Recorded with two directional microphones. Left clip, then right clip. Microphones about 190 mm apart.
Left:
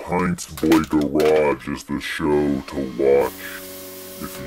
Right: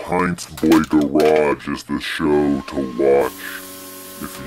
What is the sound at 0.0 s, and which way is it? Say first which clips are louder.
Speech: right 3 dB; 20° right (ahead or behind).